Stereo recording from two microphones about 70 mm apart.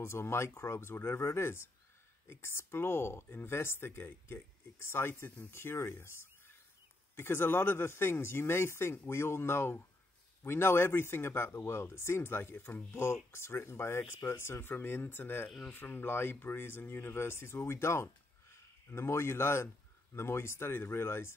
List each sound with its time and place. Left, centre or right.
0.0 s speech: left